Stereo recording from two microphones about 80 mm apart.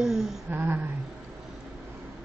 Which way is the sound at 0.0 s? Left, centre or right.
Centre.